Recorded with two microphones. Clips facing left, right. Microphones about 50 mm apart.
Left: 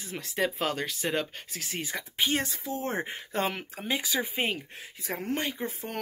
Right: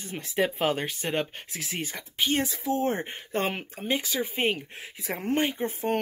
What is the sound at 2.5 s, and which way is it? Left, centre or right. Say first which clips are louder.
Speech: right 7 dB; right.